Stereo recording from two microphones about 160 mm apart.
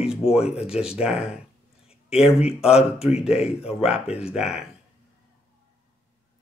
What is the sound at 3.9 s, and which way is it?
Speech, 40° left (ahead or behind).